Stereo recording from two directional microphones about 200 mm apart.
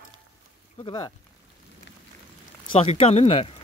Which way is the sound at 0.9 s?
20° left (ahead or behind).